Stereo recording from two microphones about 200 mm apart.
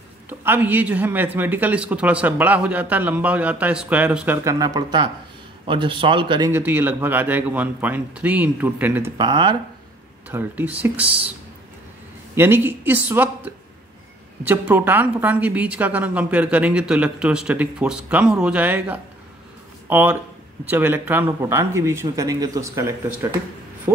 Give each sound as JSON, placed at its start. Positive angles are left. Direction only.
{"t": 0.3, "sound": "a woman's voice", "side_deg": -10}
{"t": 4.5, "sound": "speech", "side_deg": -20}
{"t": 6.5, "sound": "a woman's voice", "side_deg": -10}
{"t": 9.2, "sound": "speech", "side_deg": -20}
{"t": 10.3, "sound": "a woman's voice", "side_deg": -10}
{"t": 12.4, "sound": "a woman's voice", "side_deg": -10}
{"t": 14.4, "sound": "a woman's voice", "side_deg": -10}